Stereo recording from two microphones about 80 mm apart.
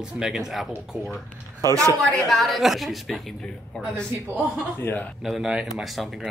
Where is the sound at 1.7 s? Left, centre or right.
Right.